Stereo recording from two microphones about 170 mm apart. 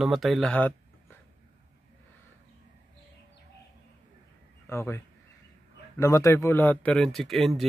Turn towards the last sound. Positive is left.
turn(degrees=0)  # may be behind; listen again after turning